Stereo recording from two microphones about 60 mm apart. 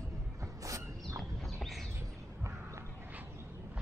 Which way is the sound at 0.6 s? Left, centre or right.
Right.